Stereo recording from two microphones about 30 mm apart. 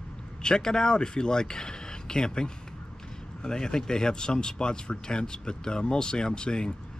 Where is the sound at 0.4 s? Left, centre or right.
Left.